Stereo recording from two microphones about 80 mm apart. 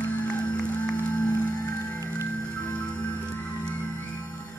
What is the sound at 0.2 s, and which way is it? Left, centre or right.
Music, centre.